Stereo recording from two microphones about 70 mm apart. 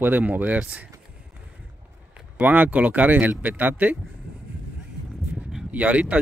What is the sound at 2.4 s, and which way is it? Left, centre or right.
Speech, right.